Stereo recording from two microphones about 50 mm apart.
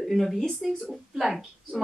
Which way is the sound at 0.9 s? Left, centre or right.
Centre.